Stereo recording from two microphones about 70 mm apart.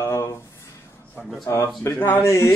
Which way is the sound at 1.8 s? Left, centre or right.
Left.